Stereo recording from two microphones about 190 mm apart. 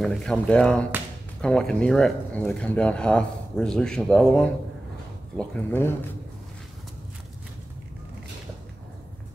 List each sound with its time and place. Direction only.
0.0 s speech: centre (ahead or behind)